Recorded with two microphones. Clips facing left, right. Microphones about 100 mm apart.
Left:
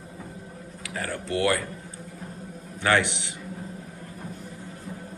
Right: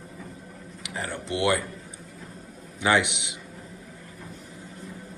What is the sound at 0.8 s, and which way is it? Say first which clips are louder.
Speech: left 1 dB; 25° right (ahead or behind).